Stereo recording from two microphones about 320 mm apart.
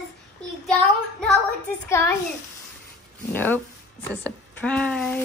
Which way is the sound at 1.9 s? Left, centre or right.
Centre.